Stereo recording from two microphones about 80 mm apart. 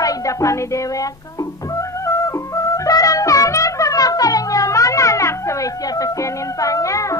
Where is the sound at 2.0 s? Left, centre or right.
Left.